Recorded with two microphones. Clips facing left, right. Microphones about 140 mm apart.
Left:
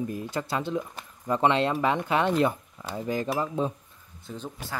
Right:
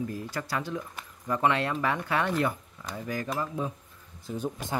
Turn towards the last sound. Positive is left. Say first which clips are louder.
# right 4 dB
turn(degrees=-15)  # may be behind; listen again after turning